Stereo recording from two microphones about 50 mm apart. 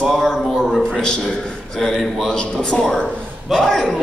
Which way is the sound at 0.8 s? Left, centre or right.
Centre.